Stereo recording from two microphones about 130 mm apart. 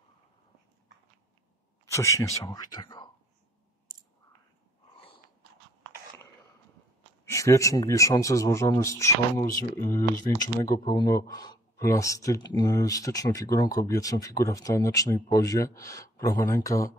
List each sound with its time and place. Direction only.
1.9 s speech: 25° left (ahead or behind)
7.2 s speech: 25° left (ahead or behind)